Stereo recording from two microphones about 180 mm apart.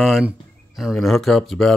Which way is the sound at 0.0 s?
Centre (ahead or behind).